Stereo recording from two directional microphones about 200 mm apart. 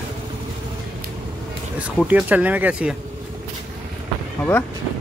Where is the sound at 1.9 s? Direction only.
5° right (ahead or behind).